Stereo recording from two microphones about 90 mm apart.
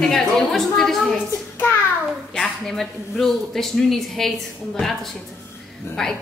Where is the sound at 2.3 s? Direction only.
5° left (ahead or behind).